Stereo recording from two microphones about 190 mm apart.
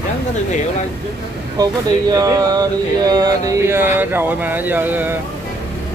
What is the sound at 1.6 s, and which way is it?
Speech, 20° right (ahead or behind).